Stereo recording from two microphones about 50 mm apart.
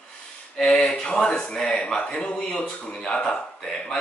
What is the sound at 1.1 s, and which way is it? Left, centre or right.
A man's voice, centre.